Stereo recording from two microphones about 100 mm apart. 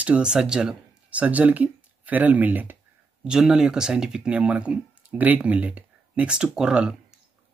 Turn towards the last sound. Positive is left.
turn(degrees=-10)  # may be behind; listen again after turning